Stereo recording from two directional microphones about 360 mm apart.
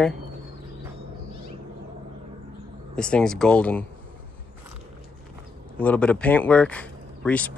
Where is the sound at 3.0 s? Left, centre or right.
Centre.